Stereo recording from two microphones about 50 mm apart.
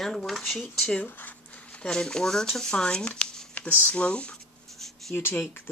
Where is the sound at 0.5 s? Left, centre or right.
Left.